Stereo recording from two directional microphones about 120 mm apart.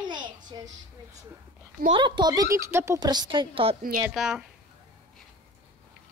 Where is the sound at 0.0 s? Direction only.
40° right (ahead or behind).